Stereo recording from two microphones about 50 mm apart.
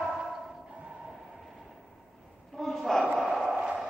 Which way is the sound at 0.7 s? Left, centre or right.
Centre.